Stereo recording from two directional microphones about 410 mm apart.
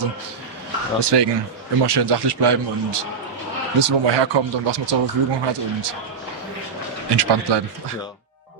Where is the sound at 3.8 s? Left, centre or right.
Right.